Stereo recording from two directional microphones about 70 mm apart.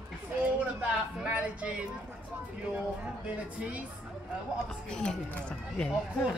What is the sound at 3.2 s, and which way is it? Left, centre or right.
Speech, centre.